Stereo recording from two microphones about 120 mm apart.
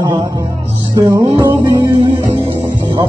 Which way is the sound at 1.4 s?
35° right (ahead or behind).